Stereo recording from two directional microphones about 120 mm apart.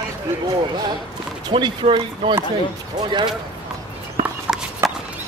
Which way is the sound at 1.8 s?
50° right (ahead or behind).